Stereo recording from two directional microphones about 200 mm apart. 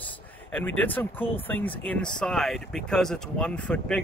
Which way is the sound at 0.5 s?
10° left (ahead or behind).